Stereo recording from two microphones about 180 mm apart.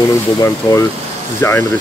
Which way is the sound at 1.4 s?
15° left (ahead or behind).